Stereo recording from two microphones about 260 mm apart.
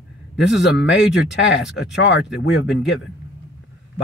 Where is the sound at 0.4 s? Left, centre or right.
Left.